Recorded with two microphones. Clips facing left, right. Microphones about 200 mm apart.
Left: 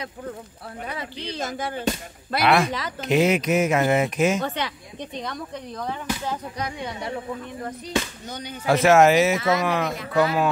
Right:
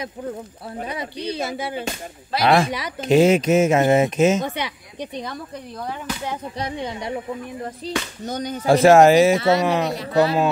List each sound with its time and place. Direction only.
0.7 s speech: 20° right (ahead or behind)
2.4 s speech: 30° right (ahead or behind)
4.6 s speech: 10° right (ahead or behind)
6.6 s speech: 20° right (ahead or behind)
8.3 s speech: 45° right (ahead or behind)
8.6 s speech: 30° right (ahead or behind)